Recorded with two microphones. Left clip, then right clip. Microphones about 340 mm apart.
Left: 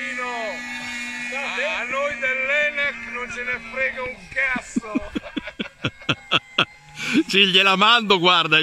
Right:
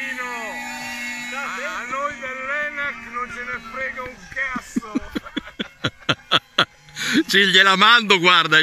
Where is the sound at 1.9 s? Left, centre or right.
Left.